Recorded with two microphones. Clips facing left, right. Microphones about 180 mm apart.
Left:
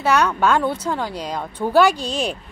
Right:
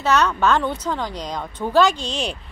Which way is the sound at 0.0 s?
10° left (ahead or behind).